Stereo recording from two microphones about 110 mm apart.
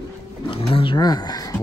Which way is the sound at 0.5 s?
55° left (ahead or behind).